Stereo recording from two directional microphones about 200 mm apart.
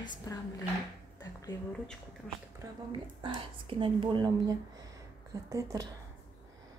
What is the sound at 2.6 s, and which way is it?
A woman's voice, 25° right (ahead or behind).